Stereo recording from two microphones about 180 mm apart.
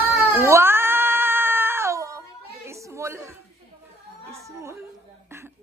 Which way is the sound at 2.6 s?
15° right (ahead or behind).